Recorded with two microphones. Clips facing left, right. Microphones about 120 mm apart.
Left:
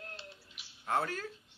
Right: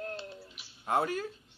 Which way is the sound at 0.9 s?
15° right (ahead or behind).